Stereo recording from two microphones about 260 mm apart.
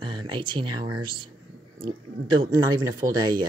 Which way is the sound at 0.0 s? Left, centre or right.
Centre.